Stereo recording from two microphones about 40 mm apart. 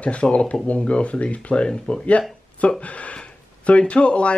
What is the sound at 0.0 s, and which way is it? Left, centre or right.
Speech, left.